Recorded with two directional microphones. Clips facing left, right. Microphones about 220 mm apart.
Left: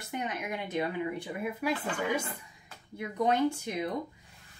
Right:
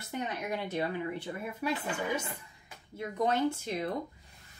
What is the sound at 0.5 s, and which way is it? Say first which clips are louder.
A woman's voice: even; 15° left (ahead or behind).